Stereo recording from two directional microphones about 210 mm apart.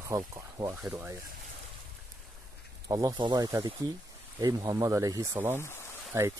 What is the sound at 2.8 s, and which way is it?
Speech, 15° right (ahead or behind).